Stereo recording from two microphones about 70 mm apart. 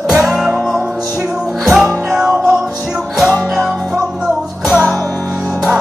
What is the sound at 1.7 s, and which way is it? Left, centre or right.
Music, centre.